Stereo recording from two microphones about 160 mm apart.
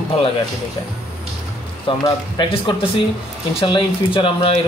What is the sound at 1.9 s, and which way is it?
Speech, 30° left (ahead or behind).